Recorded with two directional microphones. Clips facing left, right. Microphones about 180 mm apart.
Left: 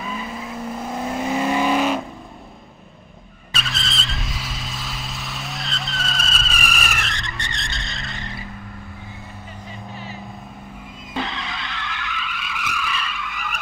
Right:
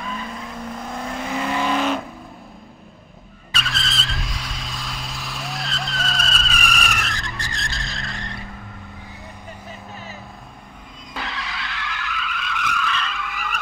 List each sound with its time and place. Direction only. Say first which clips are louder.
0.0 s vehicle: left 1 dB; 5° left (ahead or behind)
1.0 s vehicle: left 4 dB; 25° left (ahead or behind)
3.5 s vehicle: right 1 dB; centre (ahead or behind)
12.0 s vehicle: right 1 dB; centre (ahead or behind)